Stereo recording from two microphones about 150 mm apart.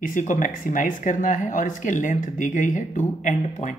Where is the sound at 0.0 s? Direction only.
60° left (ahead or behind).